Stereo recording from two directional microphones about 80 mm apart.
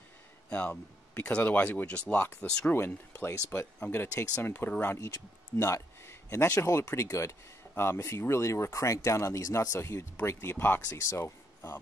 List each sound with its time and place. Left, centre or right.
0.5 s speech: centre
3.5 s speech: left
4.9 s speech: left
10.9 s speech: left